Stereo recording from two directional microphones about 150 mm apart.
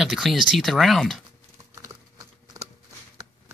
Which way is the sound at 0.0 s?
Centre (ahead or behind).